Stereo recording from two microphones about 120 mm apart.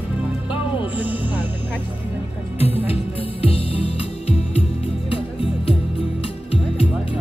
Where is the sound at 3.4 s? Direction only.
50° left (ahead or behind).